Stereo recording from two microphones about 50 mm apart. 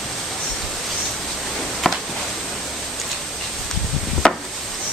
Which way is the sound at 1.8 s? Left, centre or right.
Centre.